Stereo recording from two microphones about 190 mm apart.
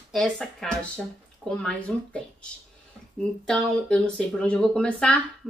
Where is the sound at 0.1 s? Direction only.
Centre (ahead or behind).